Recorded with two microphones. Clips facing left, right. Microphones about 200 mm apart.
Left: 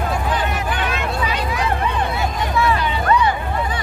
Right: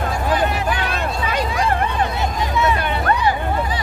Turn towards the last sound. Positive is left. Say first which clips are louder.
# even
turn(degrees=-55)  # may be behind; listen again after turning